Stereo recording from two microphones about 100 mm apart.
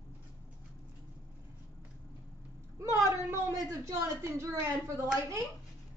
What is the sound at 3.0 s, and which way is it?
A woman's voice, 30° right (ahead or behind).